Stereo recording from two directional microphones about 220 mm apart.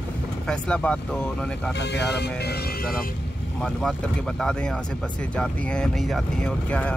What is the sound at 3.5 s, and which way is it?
Speech, 5° left (ahead or behind).